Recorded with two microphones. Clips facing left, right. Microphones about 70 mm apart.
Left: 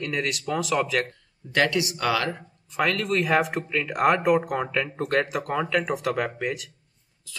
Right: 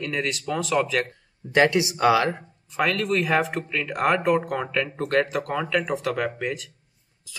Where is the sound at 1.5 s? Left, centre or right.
Right.